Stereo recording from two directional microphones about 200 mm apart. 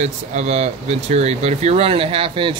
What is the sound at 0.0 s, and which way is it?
Speech, 35° right (ahead or behind).